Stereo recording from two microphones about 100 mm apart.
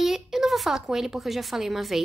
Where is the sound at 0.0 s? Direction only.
5° right (ahead or behind).